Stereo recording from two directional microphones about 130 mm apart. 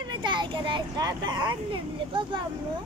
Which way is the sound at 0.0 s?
35° right (ahead or behind).